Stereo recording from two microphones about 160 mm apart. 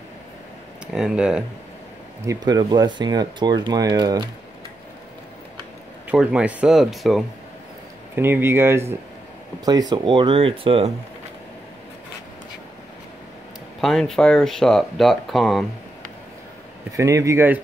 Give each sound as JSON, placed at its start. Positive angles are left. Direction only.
{"t": 0.9, "sound": "speech", "side_deg": -5}
{"t": 2.2, "sound": "speech", "side_deg": -25}
{"t": 6.0, "sound": "speech", "side_deg": -5}
{"t": 8.2, "sound": "speech", "side_deg": -15}
{"t": 13.7, "sound": "speech", "side_deg": 0}
{"t": 16.9, "sound": "speech", "side_deg": -20}